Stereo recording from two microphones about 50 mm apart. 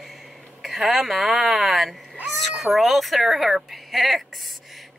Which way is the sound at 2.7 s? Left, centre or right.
Centre.